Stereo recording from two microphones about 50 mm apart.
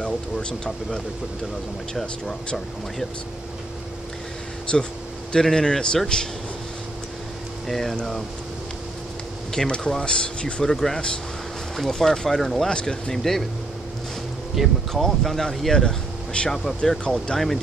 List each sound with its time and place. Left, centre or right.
0.0 s speech: centre
2.0 s speech: centre
4.7 s speech: centre
7.6 s speech: centre
9.5 s speech: centre
13.1 s speech: centre
14.5 s speech: centre